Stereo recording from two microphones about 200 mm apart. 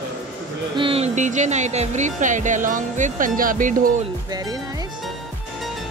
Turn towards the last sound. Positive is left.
turn(degrees=-20)  # may be behind; listen again after turning